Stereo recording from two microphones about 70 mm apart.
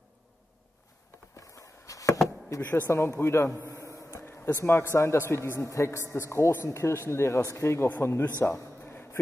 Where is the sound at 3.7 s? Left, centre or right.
Left.